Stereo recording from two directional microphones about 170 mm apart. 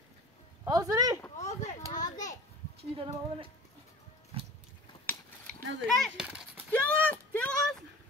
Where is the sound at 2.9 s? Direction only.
30° right (ahead or behind).